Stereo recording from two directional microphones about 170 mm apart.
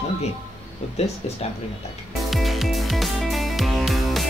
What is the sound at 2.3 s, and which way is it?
Music, centre (ahead or behind).